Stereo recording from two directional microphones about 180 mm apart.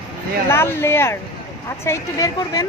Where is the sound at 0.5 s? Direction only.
15° left (ahead or behind).